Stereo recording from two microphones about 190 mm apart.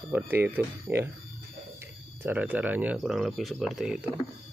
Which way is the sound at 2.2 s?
10° right (ahead or behind).